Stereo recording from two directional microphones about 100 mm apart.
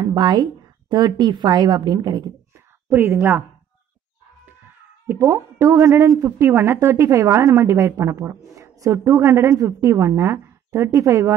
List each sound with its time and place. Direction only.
0.0 s a woman's voice: 45° right (ahead or behind)
2.9 s a woman's voice: 20° right (ahead or behind)
5.0 s a woman's voice: 25° right (ahead or behind)